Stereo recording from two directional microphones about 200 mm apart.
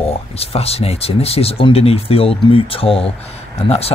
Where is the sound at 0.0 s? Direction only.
30° left (ahead or behind).